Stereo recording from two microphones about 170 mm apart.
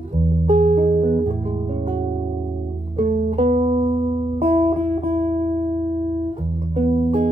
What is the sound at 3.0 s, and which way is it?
Music, 45° right (ahead or behind).